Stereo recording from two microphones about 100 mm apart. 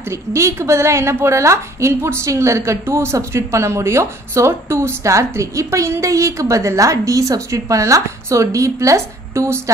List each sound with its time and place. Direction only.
0.1 s a woman's voice: 30° right (ahead or behind)